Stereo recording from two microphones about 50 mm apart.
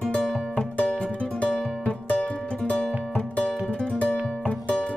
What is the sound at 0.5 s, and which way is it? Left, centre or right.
Music, left.